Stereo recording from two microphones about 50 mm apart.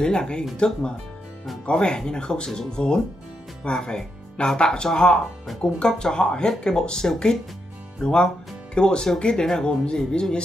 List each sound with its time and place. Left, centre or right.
0.0 s speech: centre